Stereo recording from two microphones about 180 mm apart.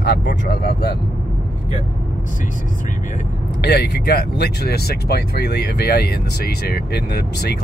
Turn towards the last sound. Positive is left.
turn(degrees=65)  # may be behind; listen again after turning